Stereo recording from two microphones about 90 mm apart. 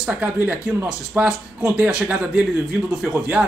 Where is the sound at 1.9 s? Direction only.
10° right (ahead or behind).